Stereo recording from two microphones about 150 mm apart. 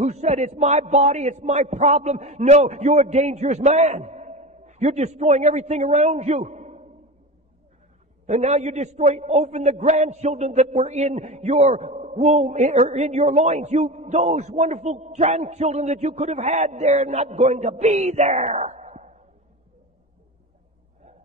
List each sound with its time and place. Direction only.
0.0 s a man's voice: 50° right (ahead or behind)
8.3 s a man's voice: 50° right (ahead or behind)